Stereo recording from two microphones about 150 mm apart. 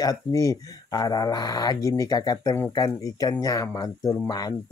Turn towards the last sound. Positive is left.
turn(degrees=20)  # may be behind; listen again after turning